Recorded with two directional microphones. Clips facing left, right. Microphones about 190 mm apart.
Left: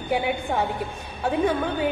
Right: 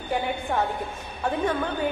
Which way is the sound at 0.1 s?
10° left (ahead or behind).